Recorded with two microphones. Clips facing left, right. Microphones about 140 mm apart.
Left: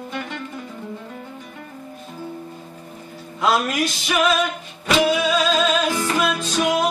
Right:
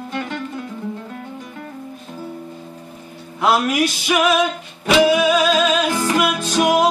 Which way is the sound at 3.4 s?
10° right (ahead or behind).